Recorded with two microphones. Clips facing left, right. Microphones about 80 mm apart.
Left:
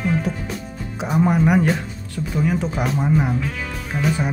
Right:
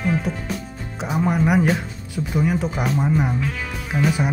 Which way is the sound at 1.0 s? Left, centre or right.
Centre.